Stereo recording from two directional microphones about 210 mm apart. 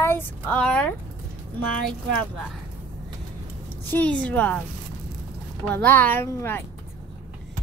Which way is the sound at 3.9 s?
5° left (ahead or behind).